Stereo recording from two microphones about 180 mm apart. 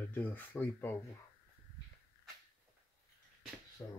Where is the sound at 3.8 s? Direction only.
10° left (ahead or behind).